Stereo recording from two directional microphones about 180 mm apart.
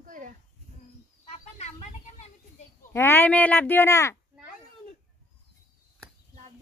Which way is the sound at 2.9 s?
10° left (ahead or behind).